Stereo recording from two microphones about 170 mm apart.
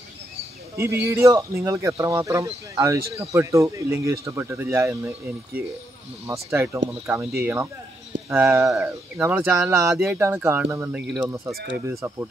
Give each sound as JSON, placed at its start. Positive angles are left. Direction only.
{"t": 0.7, "sound": "speech", "side_deg": -15}
{"t": 6.2, "sound": "speech", "side_deg": -15}